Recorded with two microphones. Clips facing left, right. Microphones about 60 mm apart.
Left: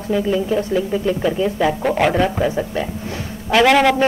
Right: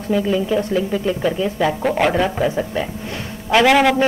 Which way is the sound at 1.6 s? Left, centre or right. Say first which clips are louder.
Even; centre.